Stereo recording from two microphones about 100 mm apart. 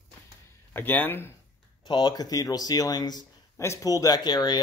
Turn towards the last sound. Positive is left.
turn(degrees=45)  # may be behind; listen again after turning